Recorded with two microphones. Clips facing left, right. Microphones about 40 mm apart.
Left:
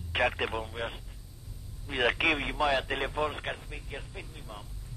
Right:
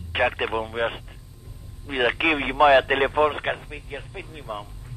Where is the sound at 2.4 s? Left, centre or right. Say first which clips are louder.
Right 12 dB; right.